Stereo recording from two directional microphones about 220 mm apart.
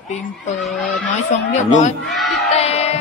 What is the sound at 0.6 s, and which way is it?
Speech, centre (ahead or behind).